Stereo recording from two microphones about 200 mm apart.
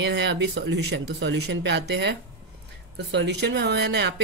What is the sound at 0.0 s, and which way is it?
Speech, 60° right (ahead or behind).